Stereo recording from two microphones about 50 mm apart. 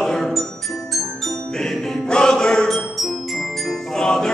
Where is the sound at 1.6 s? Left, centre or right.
Centre.